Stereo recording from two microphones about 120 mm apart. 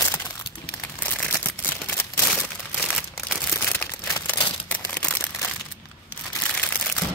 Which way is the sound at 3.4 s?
15° left (ahead or behind).